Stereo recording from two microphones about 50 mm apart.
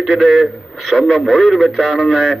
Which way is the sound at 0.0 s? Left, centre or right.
Centre.